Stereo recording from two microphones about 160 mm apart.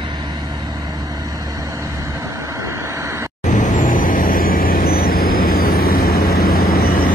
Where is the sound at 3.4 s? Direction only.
50° left (ahead or behind).